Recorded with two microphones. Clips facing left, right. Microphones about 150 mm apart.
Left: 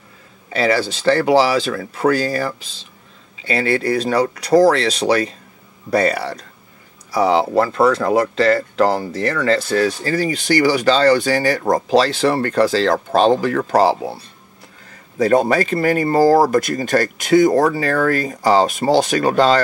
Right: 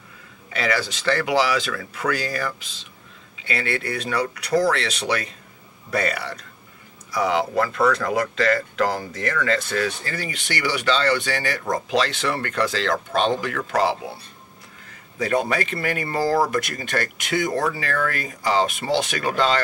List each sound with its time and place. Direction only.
0.5 s speech: 30° left (ahead or behind)